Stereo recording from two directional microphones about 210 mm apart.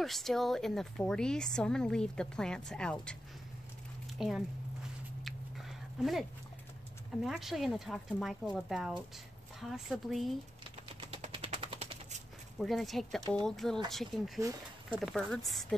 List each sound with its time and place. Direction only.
0.0 s speech: centre (ahead or behind)
4.2 s speech: centre (ahead or behind)
5.2 s chewing: centre (ahead or behind)
7.2 s speech: centre (ahead or behind)
11.1 s typewriter: 30° right (ahead or behind)
12.5 s speech: centre (ahead or behind)